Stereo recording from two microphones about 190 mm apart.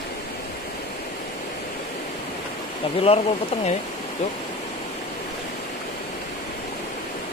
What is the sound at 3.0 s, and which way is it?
Speech, 30° left (ahead or behind).